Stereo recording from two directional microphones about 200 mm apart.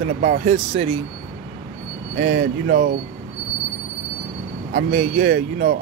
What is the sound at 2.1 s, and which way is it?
Speech, 40° right (ahead or behind).